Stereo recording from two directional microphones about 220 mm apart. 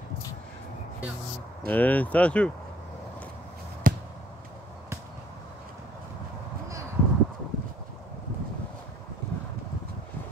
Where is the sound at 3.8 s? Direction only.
40° right (ahead or behind).